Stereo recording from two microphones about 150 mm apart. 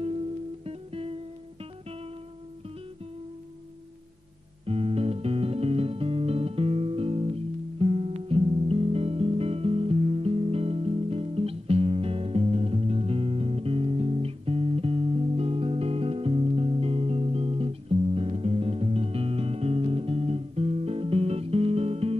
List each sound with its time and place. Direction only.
0.7 s music: 40° right (ahead or behind)
4.6 s music: 40° right (ahead or behind)